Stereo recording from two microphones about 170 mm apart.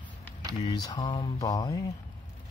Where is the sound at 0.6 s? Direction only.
25° left (ahead or behind).